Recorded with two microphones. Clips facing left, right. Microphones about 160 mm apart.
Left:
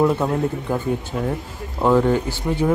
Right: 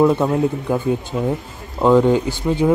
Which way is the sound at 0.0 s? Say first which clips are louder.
Right 3 dB; 15° right (ahead or behind).